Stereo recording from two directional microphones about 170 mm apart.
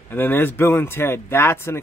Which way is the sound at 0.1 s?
10° left (ahead or behind).